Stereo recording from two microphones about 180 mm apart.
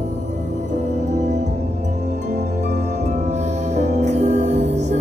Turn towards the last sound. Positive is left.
turn(degrees=-40)  # may be behind; listen again after turning